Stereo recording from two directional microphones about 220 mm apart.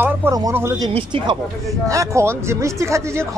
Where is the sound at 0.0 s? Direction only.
10° right (ahead or behind).